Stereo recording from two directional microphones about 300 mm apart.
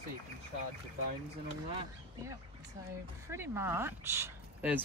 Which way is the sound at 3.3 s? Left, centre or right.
Centre.